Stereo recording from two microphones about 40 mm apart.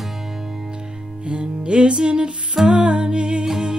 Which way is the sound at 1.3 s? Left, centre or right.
Right.